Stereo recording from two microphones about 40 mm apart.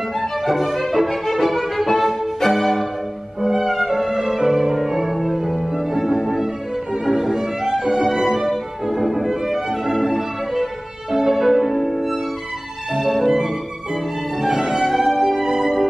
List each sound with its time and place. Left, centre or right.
0.2 s violin: centre
3.3 s music: centre
6.1 s violin: centre
12.9 s music: centre
14.4 s music: centre